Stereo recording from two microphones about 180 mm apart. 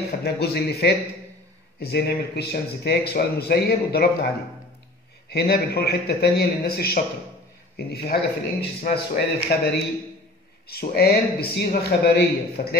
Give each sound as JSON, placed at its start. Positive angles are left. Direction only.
{"t": 0.2, "sound": "speech", "side_deg": 60}
{"t": 5.3, "sound": "speech", "side_deg": 60}
{"t": 10.7, "sound": "speech", "side_deg": 60}